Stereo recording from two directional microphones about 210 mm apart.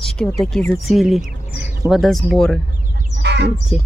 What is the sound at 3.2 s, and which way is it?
Chicken, 55° right (ahead or behind).